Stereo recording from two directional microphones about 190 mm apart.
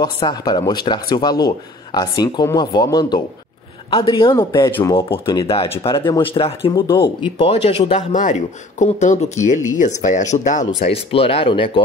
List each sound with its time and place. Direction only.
0.0 s speech: 20° left (ahead or behind)